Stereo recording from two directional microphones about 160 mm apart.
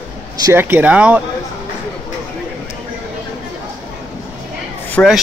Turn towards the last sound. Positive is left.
turn(degrees=15)  # may be behind; listen again after turning